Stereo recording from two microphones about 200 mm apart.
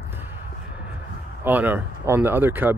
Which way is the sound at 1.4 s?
10° right (ahead or behind).